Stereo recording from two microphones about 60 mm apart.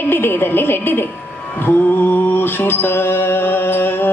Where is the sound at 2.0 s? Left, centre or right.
Left.